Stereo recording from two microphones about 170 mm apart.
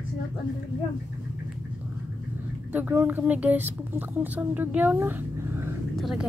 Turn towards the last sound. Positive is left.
turn(degrees=0)  # may be behind; listen again after turning